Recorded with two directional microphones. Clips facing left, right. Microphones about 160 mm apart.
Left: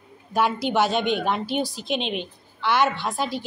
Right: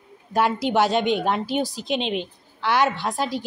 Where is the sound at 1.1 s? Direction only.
40° right (ahead or behind).